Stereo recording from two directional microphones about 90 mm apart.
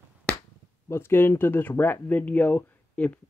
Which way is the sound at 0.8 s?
25° left (ahead or behind).